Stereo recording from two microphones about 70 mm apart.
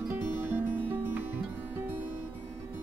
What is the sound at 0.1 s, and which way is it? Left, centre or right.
Music, right.